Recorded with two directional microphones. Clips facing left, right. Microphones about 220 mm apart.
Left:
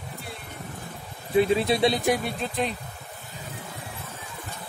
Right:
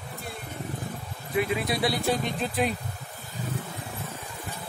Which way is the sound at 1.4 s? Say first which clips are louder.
Left 6 dB; 30° left (ahead or behind).